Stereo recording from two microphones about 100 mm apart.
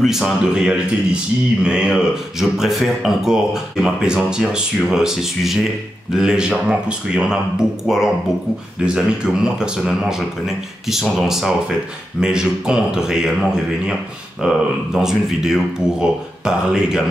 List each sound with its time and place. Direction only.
0.0 s speech: 5° right (ahead or behind)